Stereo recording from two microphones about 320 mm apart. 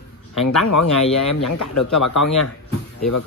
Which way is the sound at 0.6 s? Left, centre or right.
Left.